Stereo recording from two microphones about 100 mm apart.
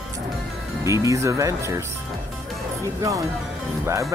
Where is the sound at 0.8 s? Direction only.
30° right (ahead or behind).